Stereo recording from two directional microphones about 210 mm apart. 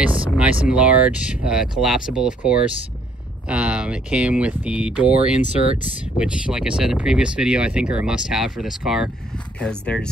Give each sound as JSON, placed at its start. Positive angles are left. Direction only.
{"t": 0.0, "sound": "speech", "side_deg": -5}
{"t": 5.6, "sound": "speech", "side_deg": -25}
{"t": 6.1, "sound": "speech", "side_deg": -5}